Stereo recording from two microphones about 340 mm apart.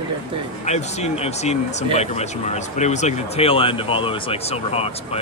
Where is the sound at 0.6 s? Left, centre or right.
Centre.